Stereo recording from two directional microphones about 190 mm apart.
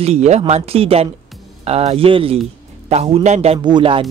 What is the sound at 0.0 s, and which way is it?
Speech, 35° right (ahead or behind).